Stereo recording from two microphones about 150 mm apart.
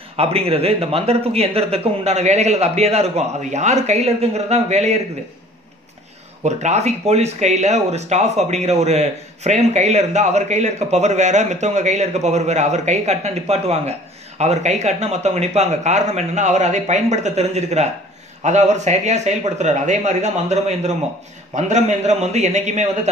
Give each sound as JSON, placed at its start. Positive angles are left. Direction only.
{"t": 0.1, "sound": "speech", "side_deg": -40}
{"t": 6.4, "sound": "speech", "side_deg": -50}